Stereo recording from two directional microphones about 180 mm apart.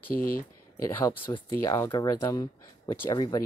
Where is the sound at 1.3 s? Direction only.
20° left (ahead or behind).